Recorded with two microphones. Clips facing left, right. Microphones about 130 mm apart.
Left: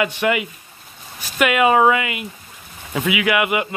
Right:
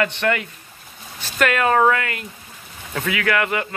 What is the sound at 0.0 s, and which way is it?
Speech, 10° left (ahead or behind).